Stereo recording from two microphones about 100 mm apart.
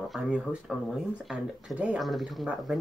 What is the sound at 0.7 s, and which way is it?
Speech, centre (ahead or behind).